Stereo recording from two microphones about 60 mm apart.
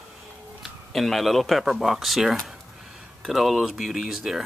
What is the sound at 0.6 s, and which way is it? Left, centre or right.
Speech, centre.